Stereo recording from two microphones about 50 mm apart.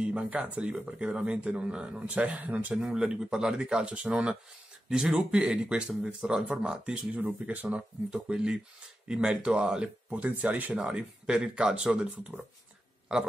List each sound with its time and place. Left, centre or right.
0.0 s speech: right
2.0 s speech: right
2.8 s speech: centre
5.1 s speech: right
10.9 s speech: right